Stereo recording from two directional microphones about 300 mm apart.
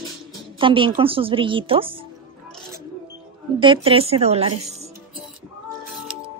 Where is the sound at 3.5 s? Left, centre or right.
Centre.